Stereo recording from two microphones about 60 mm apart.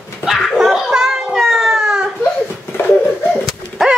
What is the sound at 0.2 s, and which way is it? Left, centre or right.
Baby cry, centre.